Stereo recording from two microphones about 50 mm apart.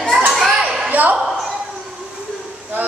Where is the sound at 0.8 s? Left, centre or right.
Right.